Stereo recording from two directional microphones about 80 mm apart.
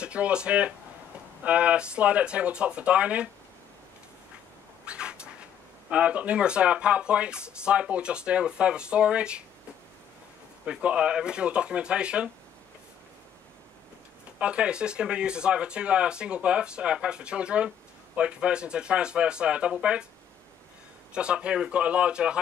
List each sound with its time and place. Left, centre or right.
0.0 s speech: centre
4.8 s a sound: centre
5.9 s speech: centre
10.6 s speech: centre
14.4 s speech: centre
21.1 s speech: centre